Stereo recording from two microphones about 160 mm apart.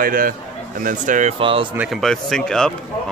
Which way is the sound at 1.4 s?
35° right (ahead or behind).